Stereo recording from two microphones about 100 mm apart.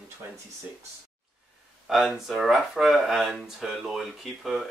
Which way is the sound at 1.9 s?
Centre (ahead or behind).